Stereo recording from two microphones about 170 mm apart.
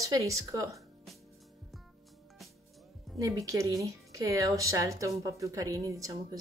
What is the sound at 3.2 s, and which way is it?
A woman's voice, 20° right (ahead or behind).